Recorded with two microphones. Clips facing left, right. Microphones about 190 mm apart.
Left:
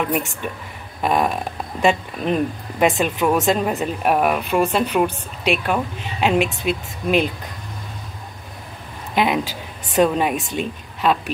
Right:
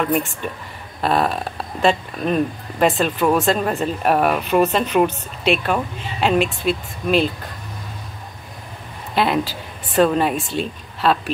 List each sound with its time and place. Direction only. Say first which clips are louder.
1.0 s a woman's voice: even; 15° left (ahead or behind)
9.1 s a woman's voice: even; 15° left (ahead or behind)